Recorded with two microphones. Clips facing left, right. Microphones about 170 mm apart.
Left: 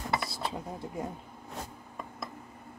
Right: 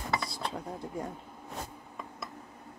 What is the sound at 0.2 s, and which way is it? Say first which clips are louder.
Dishes: left 1 dB; centre (ahead or behind).